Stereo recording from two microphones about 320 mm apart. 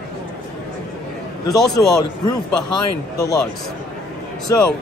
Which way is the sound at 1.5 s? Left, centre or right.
Centre.